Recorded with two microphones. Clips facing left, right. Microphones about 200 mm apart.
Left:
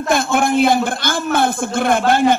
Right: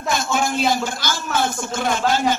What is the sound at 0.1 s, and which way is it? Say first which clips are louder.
A man's voice: left 6 dB; 55° left (ahead or behind).